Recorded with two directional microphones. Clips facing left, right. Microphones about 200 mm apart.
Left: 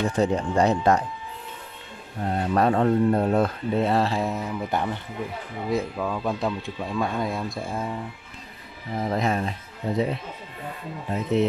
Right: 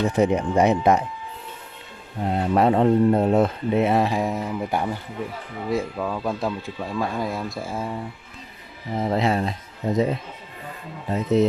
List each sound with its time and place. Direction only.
0.0 s speech: 20° right (ahead or behind)
2.2 s speech: 20° right (ahead or behind); by 7.9 s 5° right (ahead or behind)
8.9 s speech: 25° right (ahead or behind)